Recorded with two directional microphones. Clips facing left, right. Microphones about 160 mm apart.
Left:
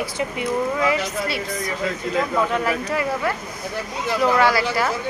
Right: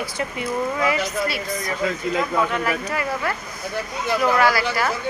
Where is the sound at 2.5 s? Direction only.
30° left (ahead or behind).